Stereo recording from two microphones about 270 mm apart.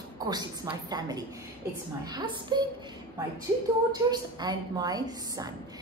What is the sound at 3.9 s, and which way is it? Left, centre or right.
A woman's voice, centre.